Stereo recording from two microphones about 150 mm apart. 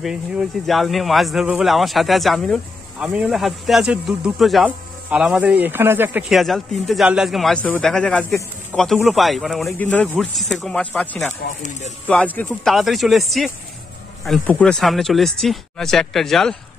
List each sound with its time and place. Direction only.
0.0 s speech: centre (ahead or behind)
6.3 s speech: centre (ahead or behind)
12.7 s speech: centre (ahead or behind)